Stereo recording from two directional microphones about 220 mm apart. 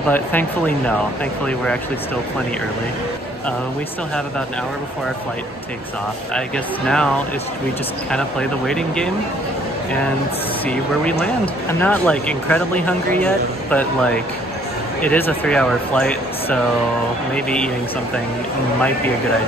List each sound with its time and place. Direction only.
0.1 s speech: 10° left (ahead or behind)
6.3 s speech: 5° left (ahead or behind)
8.1 s speech: 5° left (ahead or behind)
11.8 s speech: 5° left (ahead or behind)